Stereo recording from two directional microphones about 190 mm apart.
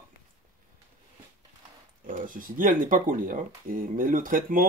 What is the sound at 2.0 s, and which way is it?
Speech, 45° right (ahead or behind).